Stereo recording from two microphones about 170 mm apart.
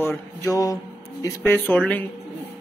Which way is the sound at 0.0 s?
15° left (ahead or behind).